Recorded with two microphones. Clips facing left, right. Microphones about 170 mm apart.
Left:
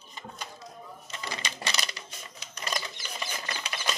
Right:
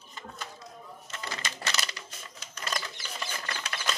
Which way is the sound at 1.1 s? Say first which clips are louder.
Left 1 dB; 15° left (ahead or behind).